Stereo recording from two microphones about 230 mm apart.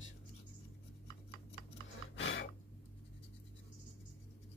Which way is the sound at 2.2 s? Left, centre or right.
Left.